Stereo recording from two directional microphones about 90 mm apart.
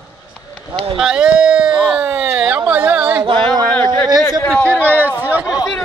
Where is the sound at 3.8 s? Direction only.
50° right (ahead or behind).